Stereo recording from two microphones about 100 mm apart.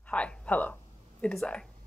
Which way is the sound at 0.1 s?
10° left (ahead or behind).